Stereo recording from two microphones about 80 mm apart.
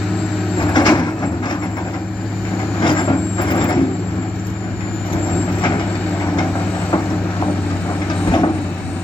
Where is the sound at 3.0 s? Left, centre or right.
Left.